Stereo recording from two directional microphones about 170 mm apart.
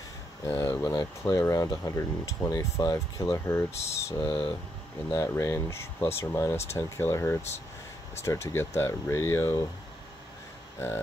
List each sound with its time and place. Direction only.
0.5 s speech: 15° left (ahead or behind)